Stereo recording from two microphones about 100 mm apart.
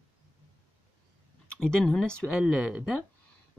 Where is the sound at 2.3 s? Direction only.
10° right (ahead or behind).